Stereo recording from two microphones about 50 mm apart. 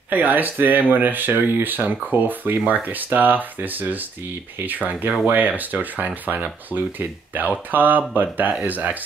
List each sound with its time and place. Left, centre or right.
0.1 s speech: right